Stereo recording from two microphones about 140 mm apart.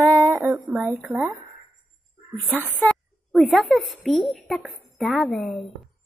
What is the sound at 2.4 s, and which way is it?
Female singing, 15° right (ahead or behind).